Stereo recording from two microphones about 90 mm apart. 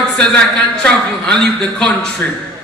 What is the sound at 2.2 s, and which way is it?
Speech, 20° left (ahead or behind).